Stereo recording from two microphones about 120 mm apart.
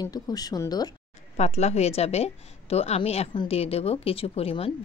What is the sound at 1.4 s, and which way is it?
Speech, 65° left (ahead or behind).